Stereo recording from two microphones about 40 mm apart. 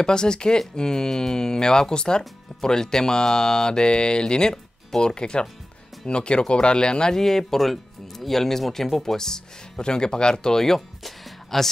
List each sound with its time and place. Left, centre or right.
0.0 s speech: centre